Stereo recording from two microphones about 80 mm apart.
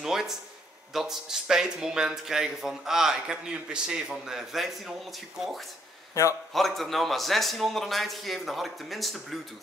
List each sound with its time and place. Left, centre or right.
0.0 s a sound: centre
0.9 s speech: centre
6.2 s a man's voice: left
6.5 s a man's voice: centre